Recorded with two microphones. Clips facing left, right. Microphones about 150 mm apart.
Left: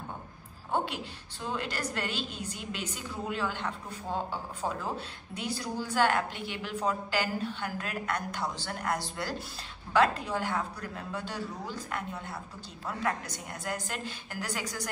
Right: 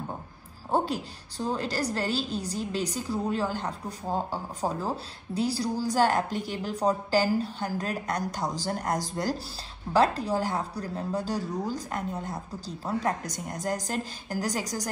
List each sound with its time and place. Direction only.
0.7 s a woman's voice: 40° right (ahead or behind)